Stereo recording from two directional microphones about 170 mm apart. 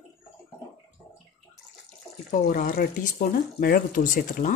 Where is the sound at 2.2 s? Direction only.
50° left (ahead or behind).